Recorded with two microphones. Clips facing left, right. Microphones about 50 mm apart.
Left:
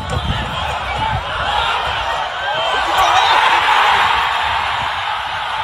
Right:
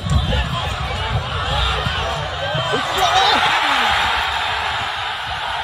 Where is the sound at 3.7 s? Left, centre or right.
Left.